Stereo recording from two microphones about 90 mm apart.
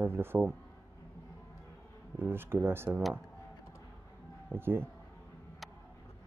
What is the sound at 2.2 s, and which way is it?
Speech, 25° right (ahead or behind).